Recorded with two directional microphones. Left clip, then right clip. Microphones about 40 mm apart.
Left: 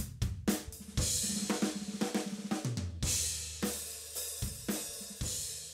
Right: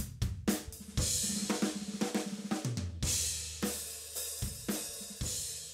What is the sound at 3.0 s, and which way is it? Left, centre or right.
Drum kit, left.